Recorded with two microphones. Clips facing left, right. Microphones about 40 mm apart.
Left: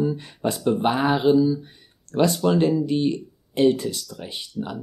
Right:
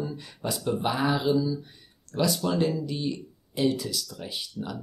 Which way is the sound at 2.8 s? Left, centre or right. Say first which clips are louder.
Left 9 dB; left.